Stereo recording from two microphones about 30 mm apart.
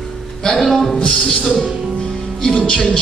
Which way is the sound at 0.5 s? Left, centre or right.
Centre.